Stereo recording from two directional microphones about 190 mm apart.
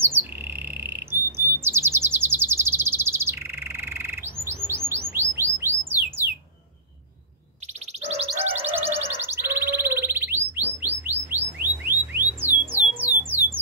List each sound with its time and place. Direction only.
0.1 s bird: 10° right (ahead or behind)
8.0 s chirp: 35° right (ahead or behind)
8.4 s music: 10° right (ahead or behind)